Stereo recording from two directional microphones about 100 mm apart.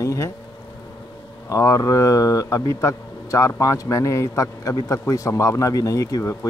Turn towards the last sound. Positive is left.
turn(degrees=30)  # may be behind; listen again after turning